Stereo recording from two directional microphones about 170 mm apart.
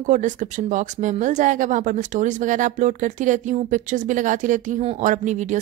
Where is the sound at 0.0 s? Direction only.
45° right (ahead or behind).